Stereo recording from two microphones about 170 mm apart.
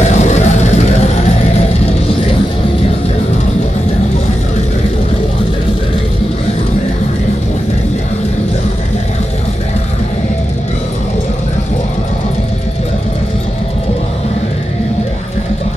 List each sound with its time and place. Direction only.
0.0 s music: 40° left (ahead or behind)